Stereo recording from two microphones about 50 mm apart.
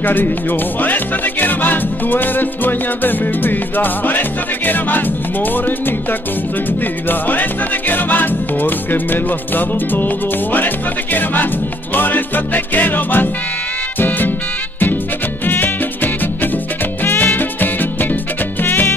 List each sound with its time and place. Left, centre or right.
0.0 s music: left
7.1 s music: left
11.9 s music: left
15.4 s music: left